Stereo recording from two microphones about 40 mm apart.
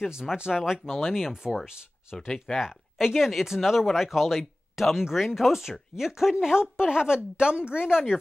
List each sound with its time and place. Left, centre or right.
0.1 s speech: centre
2.2 s speech: centre
2.6 s a woman's voice: centre